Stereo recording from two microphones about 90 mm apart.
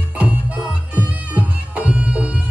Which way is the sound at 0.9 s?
15° right (ahead or behind).